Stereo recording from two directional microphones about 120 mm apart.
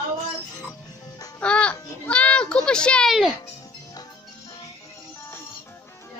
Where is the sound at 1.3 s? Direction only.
10° left (ahead or behind).